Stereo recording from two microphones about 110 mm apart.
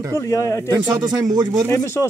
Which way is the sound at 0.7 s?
40° right (ahead or behind).